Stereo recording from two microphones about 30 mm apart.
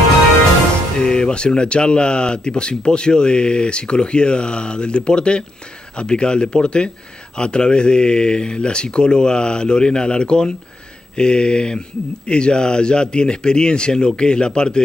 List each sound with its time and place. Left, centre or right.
0.9 s speech: left